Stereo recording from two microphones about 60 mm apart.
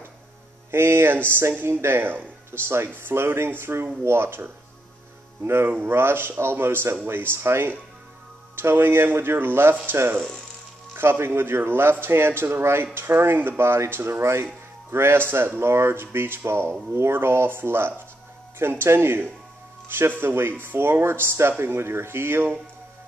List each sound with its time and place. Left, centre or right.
0.7 s speech: right